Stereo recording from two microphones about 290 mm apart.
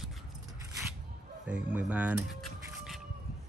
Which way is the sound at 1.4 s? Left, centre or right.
Centre.